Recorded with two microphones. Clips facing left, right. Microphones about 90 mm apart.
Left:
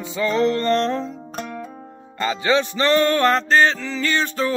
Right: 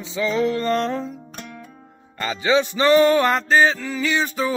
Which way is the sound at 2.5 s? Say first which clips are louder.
Right 2 dB; 10° right (ahead or behind).